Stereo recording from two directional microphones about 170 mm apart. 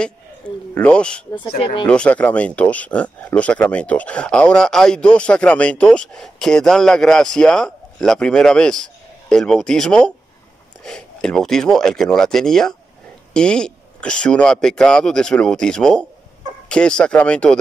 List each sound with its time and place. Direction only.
0.4 s speech: 5° left (ahead or behind)
1.6 s speech: 30° left (ahead or behind)
1.9 s speech: 5° left (ahead or behind)